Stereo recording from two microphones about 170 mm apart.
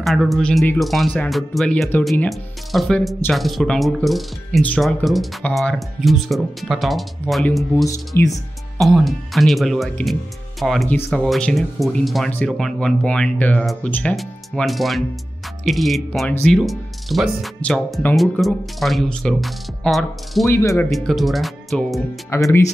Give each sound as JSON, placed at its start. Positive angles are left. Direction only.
{"t": 0.0, "sound": "speech", "side_deg": 0}
{"t": 7.7, "sound": "speech", "side_deg": 20}
{"t": 8.7, "sound": "speech", "side_deg": 0}
{"t": 20.4, "sound": "speech", "side_deg": 15}
{"t": 20.9, "sound": "speech", "side_deg": 0}
{"t": 22.3, "sound": "speech", "side_deg": 15}